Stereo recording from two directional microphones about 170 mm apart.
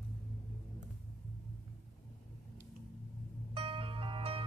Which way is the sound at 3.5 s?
30° right (ahead or behind).